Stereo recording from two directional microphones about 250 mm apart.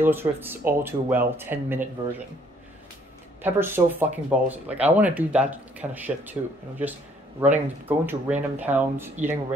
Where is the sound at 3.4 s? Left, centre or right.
Centre.